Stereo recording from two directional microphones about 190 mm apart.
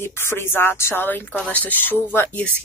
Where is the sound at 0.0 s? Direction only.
15° left (ahead or behind).